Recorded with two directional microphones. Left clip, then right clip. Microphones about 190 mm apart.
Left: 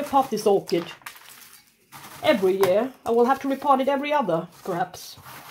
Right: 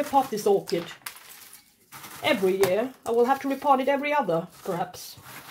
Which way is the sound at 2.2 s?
25° left (ahead or behind).